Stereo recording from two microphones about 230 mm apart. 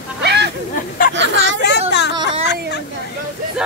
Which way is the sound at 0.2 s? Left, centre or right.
Right.